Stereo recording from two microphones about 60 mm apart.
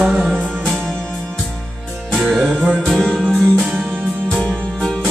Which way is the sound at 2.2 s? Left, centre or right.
Centre.